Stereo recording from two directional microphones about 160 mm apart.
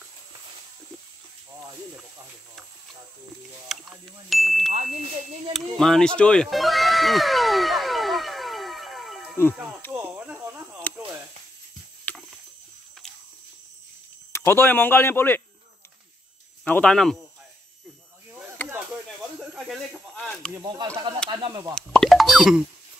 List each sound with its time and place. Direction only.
3.6 s speech: centre (ahead or behind)
4.7 s speech: 50° right (ahead or behind)
5.8 s cat: 5° left (ahead or behind)
9.9 s a sound: 15° right (ahead or behind)
12.1 s a sound: 10° left (ahead or behind)
14.3 s speech: 15° left (ahead or behind)
16.6 s speech: 10° left (ahead or behind)
19.5 s a sound: centre (ahead or behind)
20.6 s speech: 25° right (ahead or behind)
21.7 s plop: 5° left (ahead or behind)